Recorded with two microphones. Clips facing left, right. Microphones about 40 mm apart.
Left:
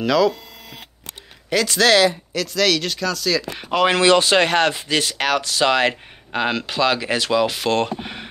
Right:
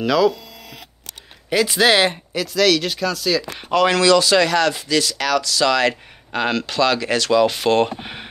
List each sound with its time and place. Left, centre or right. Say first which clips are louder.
0.0 s speech: right 1 dB; centre
1.5 s speech: even; centre
2.3 s speech: right 2 dB; centre
3.7 s speech: right 1 dB; left
6.3 s speech: right 1 dB; centre
7.4 s speech: right 3 dB; centre